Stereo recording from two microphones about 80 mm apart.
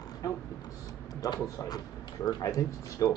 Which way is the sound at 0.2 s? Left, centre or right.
Left.